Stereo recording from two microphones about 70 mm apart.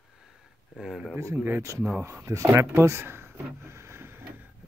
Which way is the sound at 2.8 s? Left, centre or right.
Right.